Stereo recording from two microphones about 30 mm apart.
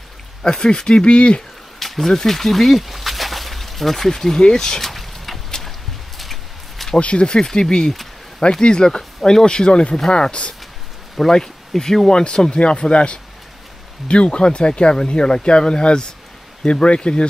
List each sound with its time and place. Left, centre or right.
0.4 s speech: left
1.8 s a sound: centre
2.1 s speech: centre
4.9 s a sound: centre
7.0 s speech: left
8.5 s speech: left
9.7 s speech: left
11.1 s speech: centre
12.1 s speech: left